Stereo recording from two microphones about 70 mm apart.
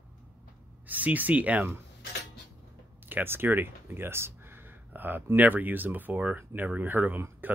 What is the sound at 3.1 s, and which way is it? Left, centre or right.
Speech, right.